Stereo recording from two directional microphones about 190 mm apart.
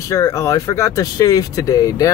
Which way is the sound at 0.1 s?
15° left (ahead or behind).